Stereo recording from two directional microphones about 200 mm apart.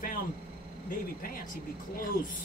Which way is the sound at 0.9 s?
45° left (ahead or behind).